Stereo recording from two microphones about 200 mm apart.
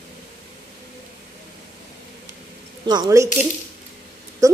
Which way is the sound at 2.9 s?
20° right (ahead or behind).